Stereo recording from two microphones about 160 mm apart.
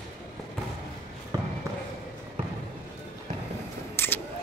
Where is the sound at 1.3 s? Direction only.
25° right (ahead or behind).